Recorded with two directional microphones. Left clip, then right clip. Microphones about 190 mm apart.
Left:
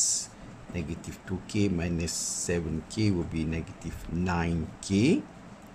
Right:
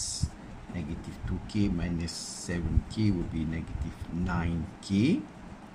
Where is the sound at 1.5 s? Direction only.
35° left (ahead or behind).